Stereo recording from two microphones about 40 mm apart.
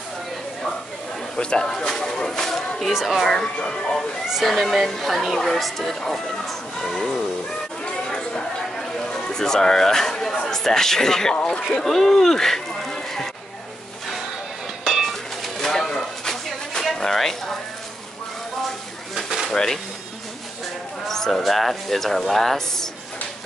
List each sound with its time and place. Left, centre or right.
1.3 s speech: left
2.9 s speech: centre
3.3 s speech: centre
4.3 s speech: centre
7.8 s a sound: left
11.8 s speech: centre
14.9 s dishes: centre
16.9 s a sound: centre
19.1 s pigeon: centre
19.5 s speech: centre
21.1 s speech: centre